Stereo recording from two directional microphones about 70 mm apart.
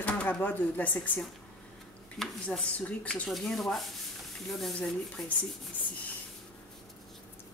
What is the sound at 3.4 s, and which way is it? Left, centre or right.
Speech, centre.